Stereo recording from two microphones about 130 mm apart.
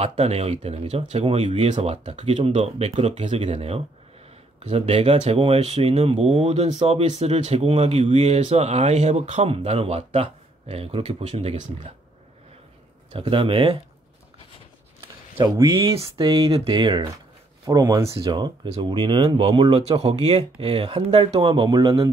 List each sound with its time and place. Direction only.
0.0 s speech: 55° right (ahead or behind)
13.1 s speech: 40° right (ahead or behind)
15.3 s speech: 25° right (ahead or behind)
18.1 s speech: 45° right (ahead or behind)
20.1 s speech: 50° right (ahead or behind)
21.7 s speech: 25° right (ahead or behind)